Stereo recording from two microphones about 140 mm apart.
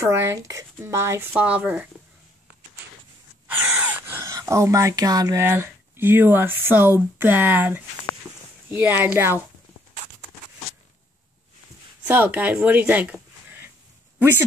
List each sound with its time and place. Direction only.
0.0 s speech: 20° right (ahead or behind)
3.6 s speech: 20° right (ahead or behind)
12.1 s speech: 10° right (ahead or behind)